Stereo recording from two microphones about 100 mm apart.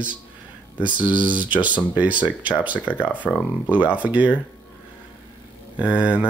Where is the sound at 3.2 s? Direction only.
15° left (ahead or behind).